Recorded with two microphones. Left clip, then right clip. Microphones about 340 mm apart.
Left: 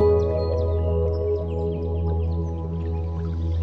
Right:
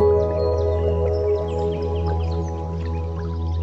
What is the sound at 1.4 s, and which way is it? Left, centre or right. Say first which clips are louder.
Music: right 4 dB; right.